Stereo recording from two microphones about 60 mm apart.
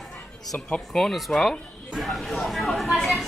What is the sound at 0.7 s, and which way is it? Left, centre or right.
Speech, centre.